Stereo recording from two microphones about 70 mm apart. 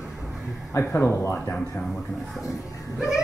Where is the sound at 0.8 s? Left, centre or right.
Left.